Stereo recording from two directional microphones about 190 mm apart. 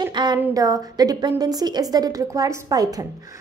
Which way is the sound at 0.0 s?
25° right (ahead or behind).